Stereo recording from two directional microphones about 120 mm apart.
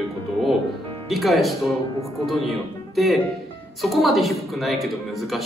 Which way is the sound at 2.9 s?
Centre (ahead or behind).